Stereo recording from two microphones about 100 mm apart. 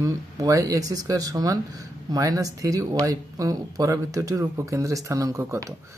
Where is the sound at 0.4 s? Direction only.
35° right (ahead or behind).